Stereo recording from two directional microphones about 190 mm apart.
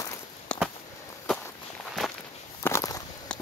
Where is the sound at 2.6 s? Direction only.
15° left (ahead or behind).